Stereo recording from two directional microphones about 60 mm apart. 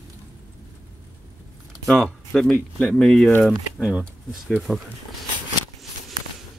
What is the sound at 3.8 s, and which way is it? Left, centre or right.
Speech, centre.